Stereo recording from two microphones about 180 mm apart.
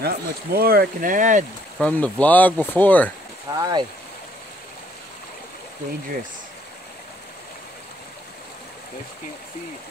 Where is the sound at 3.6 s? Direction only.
25° right (ahead or behind).